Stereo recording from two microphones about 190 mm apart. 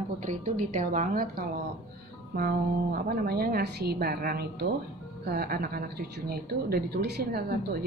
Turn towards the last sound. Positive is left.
turn(degrees=-55)  # may be behind; listen again after turning